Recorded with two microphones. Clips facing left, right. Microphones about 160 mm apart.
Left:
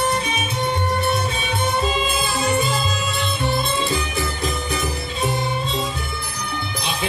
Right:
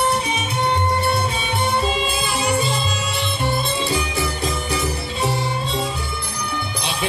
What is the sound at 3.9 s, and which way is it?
Music, 20° right (ahead or behind).